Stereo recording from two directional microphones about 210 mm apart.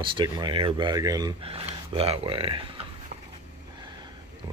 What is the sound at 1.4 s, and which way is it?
Speech, 25° right (ahead or behind).